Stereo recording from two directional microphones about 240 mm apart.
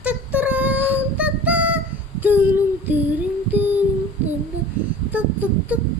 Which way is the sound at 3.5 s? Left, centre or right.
Centre.